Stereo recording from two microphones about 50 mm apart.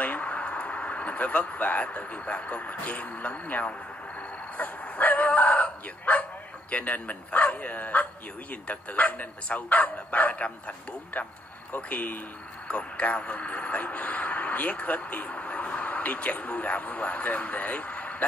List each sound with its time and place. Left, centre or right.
0.0 s speech: left
4.6 s dog: left
6.7 s speech: left